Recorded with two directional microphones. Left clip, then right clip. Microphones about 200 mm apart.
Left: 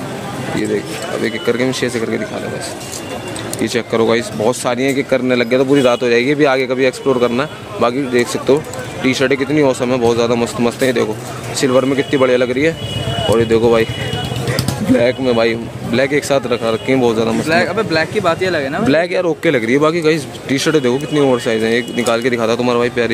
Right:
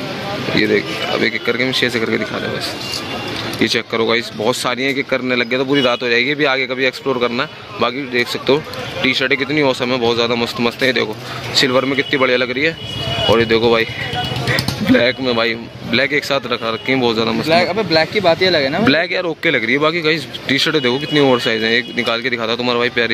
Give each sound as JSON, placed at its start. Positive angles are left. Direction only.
{"t": 0.6, "sound": "speech", "side_deg": 0}
{"t": 3.6, "sound": "speech", "side_deg": 5}
{"t": 14.9, "sound": "speech", "side_deg": 5}
{"t": 17.5, "sound": "speech", "side_deg": -25}
{"t": 18.9, "sound": "speech", "side_deg": 5}